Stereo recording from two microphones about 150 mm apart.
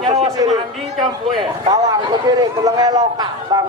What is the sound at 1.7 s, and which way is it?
A man's voice, 30° right (ahead or behind).